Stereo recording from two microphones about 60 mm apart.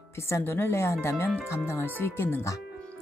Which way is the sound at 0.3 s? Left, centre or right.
Left.